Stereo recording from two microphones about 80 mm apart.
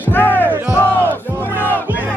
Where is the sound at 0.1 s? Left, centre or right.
Left.